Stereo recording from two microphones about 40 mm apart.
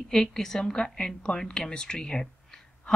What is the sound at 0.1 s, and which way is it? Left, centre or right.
Speech, centre.